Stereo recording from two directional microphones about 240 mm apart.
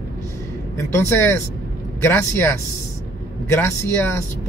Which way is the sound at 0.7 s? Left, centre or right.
Centre.